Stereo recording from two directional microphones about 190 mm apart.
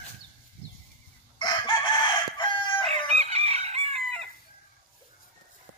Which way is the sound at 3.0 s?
30° right (ahead or behind).